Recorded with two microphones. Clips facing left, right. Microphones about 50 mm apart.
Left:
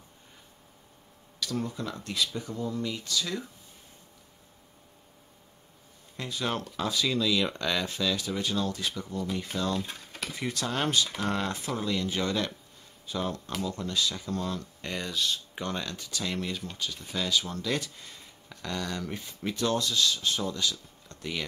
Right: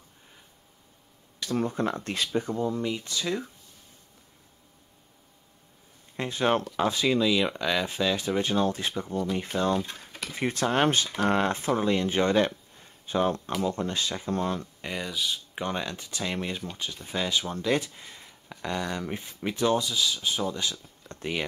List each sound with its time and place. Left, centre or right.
1.4 s speech: right
6.1 s speech: right
14.8 s speech: centre
20.5 s speech: right